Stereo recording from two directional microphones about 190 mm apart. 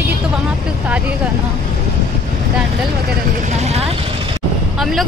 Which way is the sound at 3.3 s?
35° right (ahead or behind).